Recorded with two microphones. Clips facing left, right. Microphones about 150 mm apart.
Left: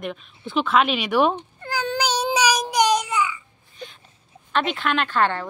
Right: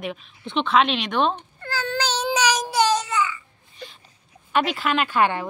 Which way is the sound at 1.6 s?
15° left (ahead or behind).